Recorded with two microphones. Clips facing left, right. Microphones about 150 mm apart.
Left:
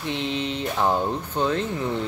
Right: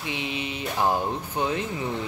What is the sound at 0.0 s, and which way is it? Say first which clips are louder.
Speech: left 4 dB; 10° right (ahead or behind).